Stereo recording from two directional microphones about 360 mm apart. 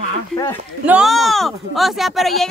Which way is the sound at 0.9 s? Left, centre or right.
Centre.